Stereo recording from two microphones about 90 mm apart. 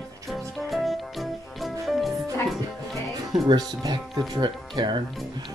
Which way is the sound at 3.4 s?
50° right (ahead or behind).